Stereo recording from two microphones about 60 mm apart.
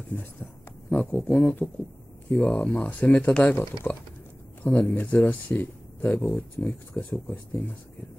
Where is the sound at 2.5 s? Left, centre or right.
Left.